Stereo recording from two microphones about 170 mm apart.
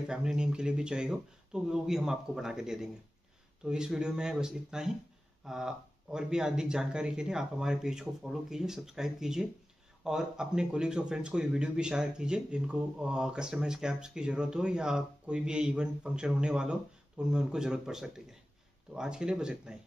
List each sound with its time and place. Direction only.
0.1 s speech: 5° right (ahead or behind)